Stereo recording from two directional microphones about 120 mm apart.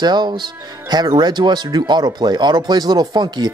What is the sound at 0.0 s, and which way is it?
Speech, 35° right (ahead or behind).